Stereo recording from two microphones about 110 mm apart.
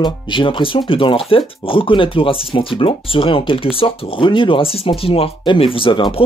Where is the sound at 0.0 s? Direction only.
45° left (ahead or behind).